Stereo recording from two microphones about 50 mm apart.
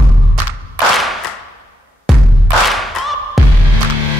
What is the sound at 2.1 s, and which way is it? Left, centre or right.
Music, centre.